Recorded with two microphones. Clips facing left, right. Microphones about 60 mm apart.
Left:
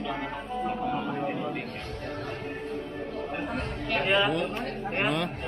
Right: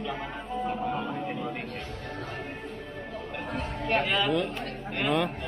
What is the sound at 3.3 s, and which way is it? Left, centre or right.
Chatter, left.